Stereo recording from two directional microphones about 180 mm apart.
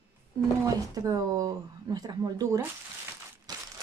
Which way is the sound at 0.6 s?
20° right (ahead or behind).